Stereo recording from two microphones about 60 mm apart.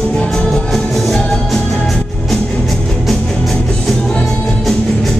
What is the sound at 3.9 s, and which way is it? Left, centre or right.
Music, centre.